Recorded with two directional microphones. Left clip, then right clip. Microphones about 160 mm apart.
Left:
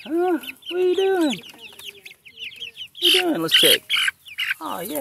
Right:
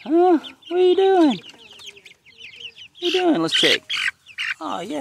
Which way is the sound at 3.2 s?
25° right (ahead or behind).